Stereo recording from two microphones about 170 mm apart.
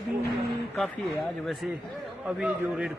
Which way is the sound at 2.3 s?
5° right (ahead or behind).